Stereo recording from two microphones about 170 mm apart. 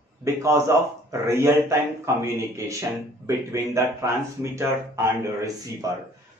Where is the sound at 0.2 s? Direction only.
15° right (ahead or behind).